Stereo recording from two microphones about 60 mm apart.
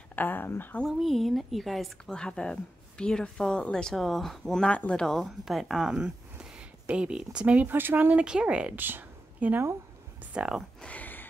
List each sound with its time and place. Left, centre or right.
0.1 s a sound: left
0.5 s a woman's voice: left
0.8 s a woman's voice: centre
2.0 s a woman's voice: centre
4.6 s speech: centre
5.2 s a woman's voice: centre
7.6 s speech: right
8.2 s speech: centre
8.7 s a sound: right
10.3 s speech: centre
10.9 s a sound: left